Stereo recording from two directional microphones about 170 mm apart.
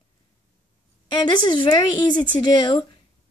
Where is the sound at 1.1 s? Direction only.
25° left (ahead or behind).